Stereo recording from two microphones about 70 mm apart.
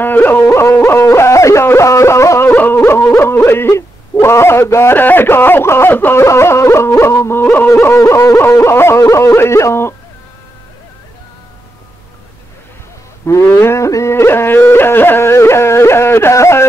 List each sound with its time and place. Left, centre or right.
0.0 s yodeling: left
0.5 s speech: left
1.1 s a sound: left
2.5 s yodeling: left
2.8 s yodeling: left
3.2 s speech: left
6.2 s speech: left
7.7 s yodeling: left
8.4 s speech: left
13.2 s yodeling: left